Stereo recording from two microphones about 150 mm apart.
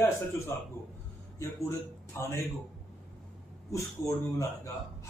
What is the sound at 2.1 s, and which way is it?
Speech, 15° left (ahead or behind).